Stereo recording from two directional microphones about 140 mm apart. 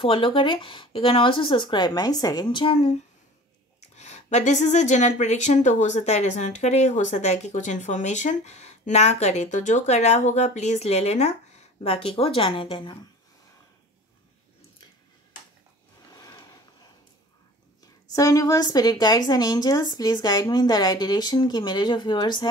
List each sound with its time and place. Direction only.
0.0 s speech: 40° left (ahead or behind)
3.9 s speech: 55° left (ahead or behind); by 12.9 s 35° left (ahead or behind)
16.2 s a sound: 25° left (ahead or behind)
18.1 s a woman's voice: 25° left (ahead or behind)